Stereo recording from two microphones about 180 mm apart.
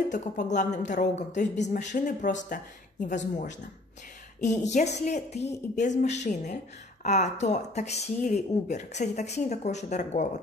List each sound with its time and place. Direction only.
0.1 s speech: 40° left (ahead or behind)